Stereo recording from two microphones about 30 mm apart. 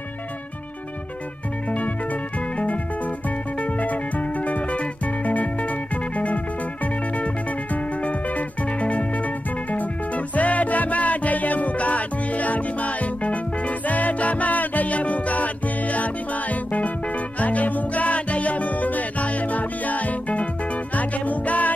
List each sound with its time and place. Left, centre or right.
2.5 s music: left